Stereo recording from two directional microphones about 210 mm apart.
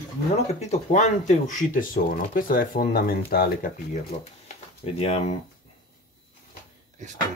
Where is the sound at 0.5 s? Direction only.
35° left (ahead or behind).